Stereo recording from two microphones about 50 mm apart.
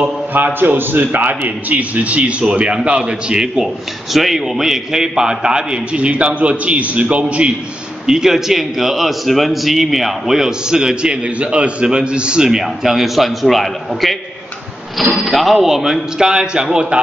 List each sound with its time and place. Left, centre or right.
0.3 s a man's voice: right; by 3.6 s centre
3.6 s a man's voice: centre; by 7.5 s right
8.1 s a man's voice: centre
15.1 s a man's voice: centre